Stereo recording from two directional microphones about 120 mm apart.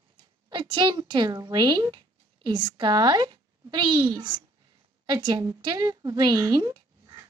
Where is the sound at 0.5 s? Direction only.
40° right (ahead or behind).